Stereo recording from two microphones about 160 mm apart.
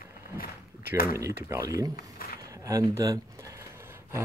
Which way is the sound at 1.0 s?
20° right (ahead or behind).